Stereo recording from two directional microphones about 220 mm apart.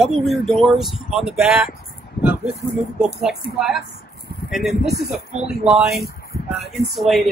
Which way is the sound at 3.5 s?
Centre (ahead or behind).